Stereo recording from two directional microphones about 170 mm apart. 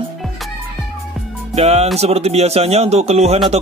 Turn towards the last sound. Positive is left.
turn(degrees=-40)  # may be behind; listen again after turning